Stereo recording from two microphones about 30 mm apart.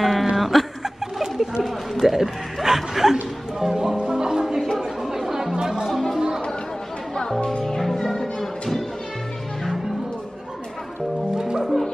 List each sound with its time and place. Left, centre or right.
0.0 s a sound: centre
0.4 s chuckle: centre
0.8 s chuckle: centre
1.6 s a sound: centre
2.1 s music: centre
4.7 s chatter: centre
7.2 s music: left
7.6 s music: centre
11.3 s music: right